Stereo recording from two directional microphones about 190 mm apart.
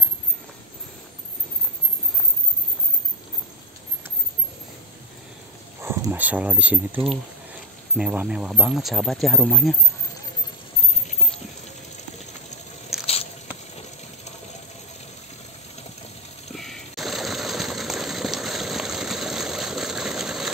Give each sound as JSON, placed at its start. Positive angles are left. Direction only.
{"t": 5.8, "sound": "speech", "side_deg": -15}
{"t": 13.0, "sound": "biting", "side_deg": 30}
{"t": 16.5, "sound": "a sound", "side_deg": 0}